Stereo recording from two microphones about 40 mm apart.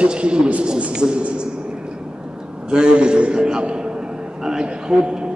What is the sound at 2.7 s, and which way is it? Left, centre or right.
A man's voice, right.